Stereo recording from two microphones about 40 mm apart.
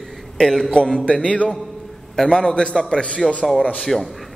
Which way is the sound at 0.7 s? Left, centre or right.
Left.